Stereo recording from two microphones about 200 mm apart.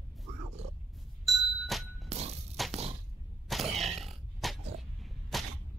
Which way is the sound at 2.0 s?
30° right (ahead or behind).